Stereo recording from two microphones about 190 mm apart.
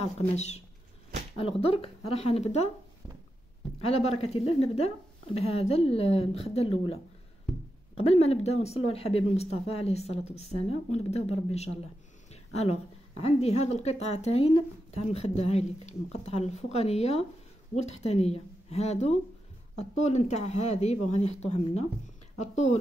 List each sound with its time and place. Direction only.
0.3 s a woman's voice: 35° left (ahead or behind)
3.8 s a woman's voice: 35° left (ahead or behind)
8.0 s a woman's voice: 35° left (ahead or behind)